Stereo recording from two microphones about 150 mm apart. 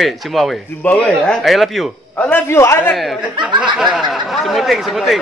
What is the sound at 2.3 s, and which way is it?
Speech, 15° left (ahead or behind).